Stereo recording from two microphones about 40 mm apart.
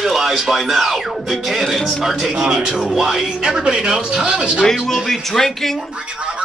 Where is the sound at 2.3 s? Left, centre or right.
Right.